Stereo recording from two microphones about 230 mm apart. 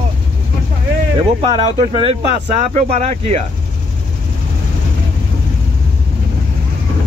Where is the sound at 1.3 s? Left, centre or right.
Right.